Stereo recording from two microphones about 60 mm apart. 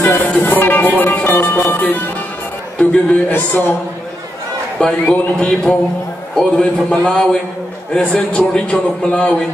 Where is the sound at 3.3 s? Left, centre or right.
Left.